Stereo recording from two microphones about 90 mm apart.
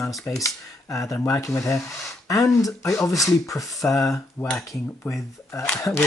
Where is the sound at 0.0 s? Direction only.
35° left (ahead or behind).